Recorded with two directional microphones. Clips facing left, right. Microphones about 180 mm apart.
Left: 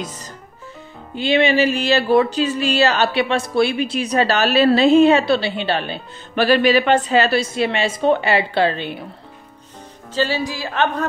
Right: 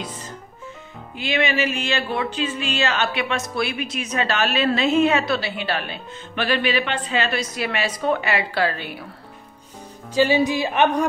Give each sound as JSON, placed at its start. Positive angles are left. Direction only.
{"t": 1.1, "sound": "speech", "side_deg": 30}
{"t": 10.1, "sound": "a woman's voice", "side_deg": -15}